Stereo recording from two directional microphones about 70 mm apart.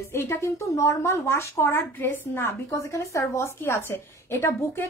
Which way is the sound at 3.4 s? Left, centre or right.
Left.